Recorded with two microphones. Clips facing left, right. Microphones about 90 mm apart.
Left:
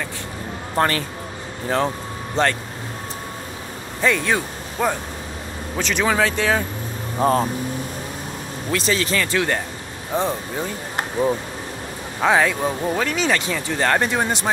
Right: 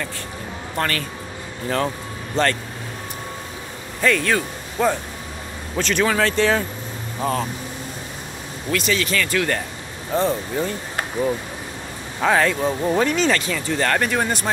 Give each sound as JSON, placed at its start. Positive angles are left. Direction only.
{"t": 0.7, "sound": "speech", "side_deg": 25}
{"t": 2.4, "sound": "speech", "side_deg": 20}
{"t": 4.0, "sound": "speech", "side_deg": 15}
{"t": 7.2, "sound": "speech", "side_deg": 40}
{"t": 8.7, "sound": "speech", "side_deg": 30}
{"t": 12.2, "sound": "speech", "side_deg": 10}
{"t": 12.9, "sound": "speech", "side_deg": -5}
{"t": 13.2, "sound": "speech", "side_deg": 15}